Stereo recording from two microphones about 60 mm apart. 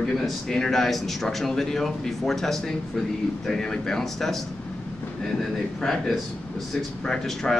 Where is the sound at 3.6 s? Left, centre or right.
Centre.